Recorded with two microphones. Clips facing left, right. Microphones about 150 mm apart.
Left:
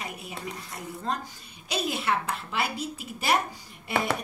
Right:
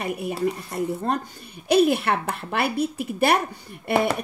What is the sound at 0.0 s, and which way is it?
A woman's voice, 55° right (ahead or behind).